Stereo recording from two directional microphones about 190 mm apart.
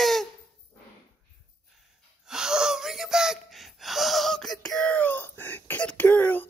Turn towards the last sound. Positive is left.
turn(degrees=10)  # may be behind; listen again after turning